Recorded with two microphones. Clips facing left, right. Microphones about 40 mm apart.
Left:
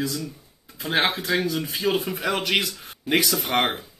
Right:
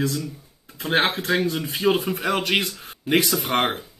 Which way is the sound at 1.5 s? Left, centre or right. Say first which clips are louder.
Right 3 dB; right.